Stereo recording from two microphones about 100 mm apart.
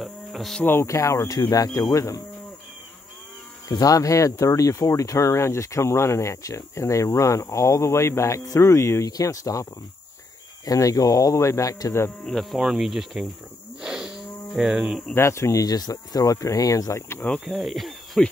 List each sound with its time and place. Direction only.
0.0 s a sound: centre (ahead or behind)
0.7 s speech: 25° left (ahead or behind)
3.6 s speech: 35° left (ahead or behind)
12.3 s speech: centre (ahead or behind)
13.7 s livestock: 5° right (ahead or behind)
15.1 s speech: 30° left (ahead or behind)
17.5 s speech: centre (ahead or behind)